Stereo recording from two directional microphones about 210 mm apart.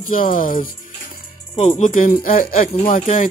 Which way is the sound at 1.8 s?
40° left (ahead or behind).